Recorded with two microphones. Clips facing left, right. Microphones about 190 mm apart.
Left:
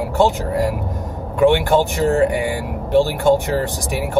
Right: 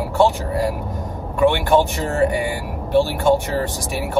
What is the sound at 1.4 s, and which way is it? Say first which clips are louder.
Speech: left 2 dB; 20° left (ahead or behind).